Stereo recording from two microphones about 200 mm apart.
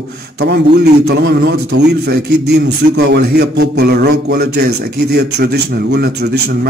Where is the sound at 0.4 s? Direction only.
55° right (ahead or behind).